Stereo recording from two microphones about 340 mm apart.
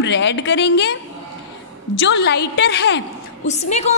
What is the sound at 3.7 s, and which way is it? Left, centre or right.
Speech, centre.